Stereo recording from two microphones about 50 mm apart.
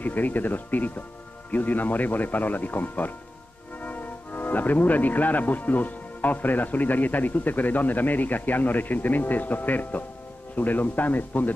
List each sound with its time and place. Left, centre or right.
0.0 s speech: left